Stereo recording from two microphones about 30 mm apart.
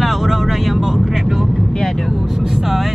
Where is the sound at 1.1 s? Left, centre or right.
Centre.